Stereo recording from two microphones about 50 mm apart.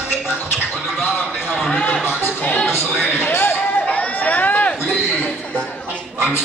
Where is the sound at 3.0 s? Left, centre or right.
Left.